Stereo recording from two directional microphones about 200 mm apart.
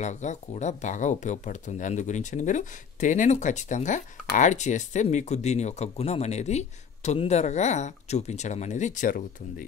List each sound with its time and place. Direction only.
0.0 s speech: 35° left (ahead or behind)